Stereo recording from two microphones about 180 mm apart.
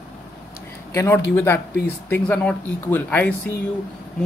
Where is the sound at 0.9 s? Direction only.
15° left (ahead or behind).